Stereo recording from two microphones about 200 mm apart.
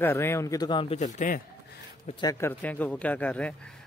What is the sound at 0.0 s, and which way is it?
Speech, 10° left (ahead or behind).